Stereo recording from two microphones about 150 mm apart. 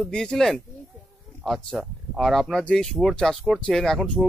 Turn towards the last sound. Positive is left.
turn(degrees=5)  # may be behind; listen again after turning